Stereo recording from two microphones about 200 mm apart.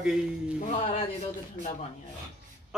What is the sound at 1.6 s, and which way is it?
Speech, 40° right (ahead or behind).